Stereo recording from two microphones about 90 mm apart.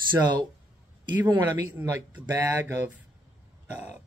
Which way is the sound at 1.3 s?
45° right (ahead or behind).